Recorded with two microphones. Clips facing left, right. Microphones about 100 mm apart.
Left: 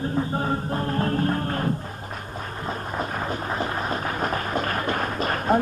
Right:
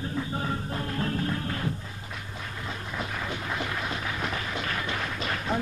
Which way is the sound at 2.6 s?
40° left (ahead or behind).